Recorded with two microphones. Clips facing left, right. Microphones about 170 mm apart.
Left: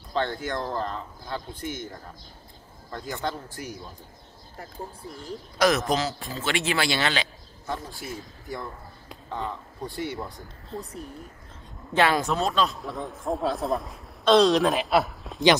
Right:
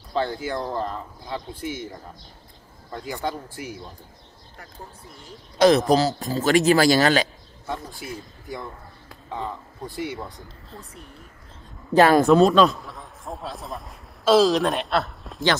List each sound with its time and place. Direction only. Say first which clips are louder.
0.1 s speech: right 2 dB; 5° right (ahead or behind)
5.6 s a man's voice: right 6 dB; 30° right (ahead or behind)
7.6 s speech: right 1 dB; centre (ahead or behind)
10.8 s speech: left 9 dB; 35° left (ahead or behind)
11.9 s speech: right 7 dB; 45° right (ahead or behind)
12.4 s speech: right 9 dB; centre (ahead or behind)